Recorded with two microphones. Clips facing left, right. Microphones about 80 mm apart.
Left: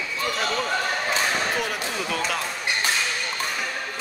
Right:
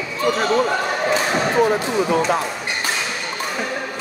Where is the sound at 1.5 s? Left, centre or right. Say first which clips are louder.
Right 10 dB; right.